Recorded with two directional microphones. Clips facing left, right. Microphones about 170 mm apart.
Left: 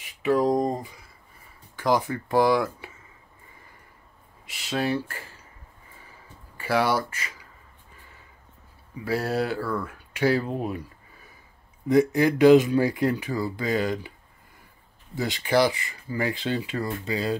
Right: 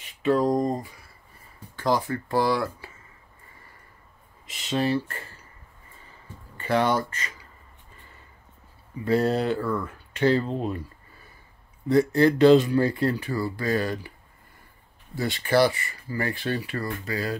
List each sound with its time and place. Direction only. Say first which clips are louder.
0.0 s speech: even; 10° left (ahead or behind)
4.5 s speech: right 2 dB; 5° left (ahead or behind)
6.5 s speech: right 1 dB; 5° left (ahead or behind)
9.0 s speech: right 3 dB; 5° left (ahead or behind)
11.9 s speech: right 1 dB; 15° left (ahead or behind)
15.1 s speech: right 1 dB; 15° left (ahead or behind)